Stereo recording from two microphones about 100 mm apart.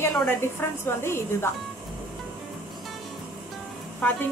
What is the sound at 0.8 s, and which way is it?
Speech, 25° left (ahead or behind).